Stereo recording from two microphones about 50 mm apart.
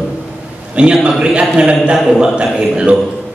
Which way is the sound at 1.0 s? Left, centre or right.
Centre.